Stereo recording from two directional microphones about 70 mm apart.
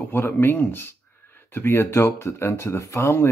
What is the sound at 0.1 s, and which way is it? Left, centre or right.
Speech, left.